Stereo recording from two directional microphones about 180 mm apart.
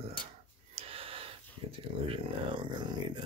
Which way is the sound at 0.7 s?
30° right (ahead or behind).